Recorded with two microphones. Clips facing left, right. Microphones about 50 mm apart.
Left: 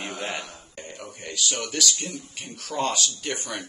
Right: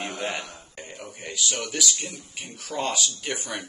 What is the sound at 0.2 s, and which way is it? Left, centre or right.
Speech, centre.